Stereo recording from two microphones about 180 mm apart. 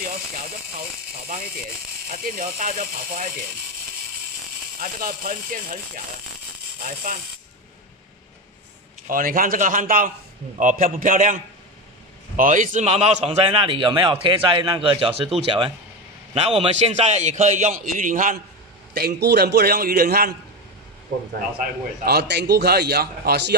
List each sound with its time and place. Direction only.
0.7 s a sound: 55° right (ahead or behind)
2.0 s speech: 50° right (ahead or behind)
4.7 s speech: 55° right (ahead or behind)
6.8 s speech: 50° right (ahead or behind)
9.1 s a man's voice: 50° right (ahead or behind)
18.9 s a man's voice: 60° right (ahead or behind)
22.0 s a man's voice: 60° right (ahead or behind)